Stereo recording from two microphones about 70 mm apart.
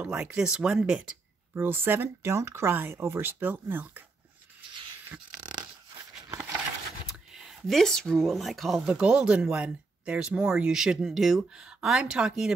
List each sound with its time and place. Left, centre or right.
0.1 s speech: centre
1.5 s speech: right
7.1 s speech: centre
8.8 s speech: centre